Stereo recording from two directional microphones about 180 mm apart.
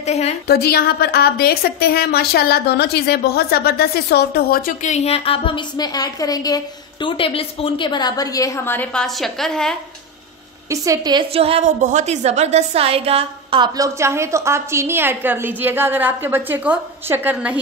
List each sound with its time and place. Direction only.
0.0 s a woman's voice: 35° left (ahead or behind)
0.5 s a woman's voice: 60° left (ahead or behind); by 9.8 s 5° left (ahead or behind)
10.7 s a woman's voice: 20° right (ahead or behind)